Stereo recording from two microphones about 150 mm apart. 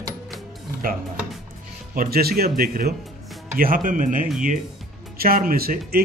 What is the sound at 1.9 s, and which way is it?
Speech, 80° right.